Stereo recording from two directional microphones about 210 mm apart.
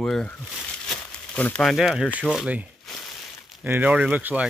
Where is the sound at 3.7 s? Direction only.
10° right (ahead or behind).